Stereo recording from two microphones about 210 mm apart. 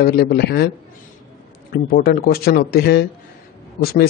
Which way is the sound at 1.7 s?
45° left (ahead or behind).